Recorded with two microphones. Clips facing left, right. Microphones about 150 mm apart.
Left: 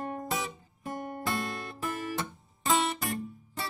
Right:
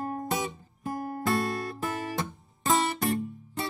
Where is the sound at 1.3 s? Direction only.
40° right (ahead or behind).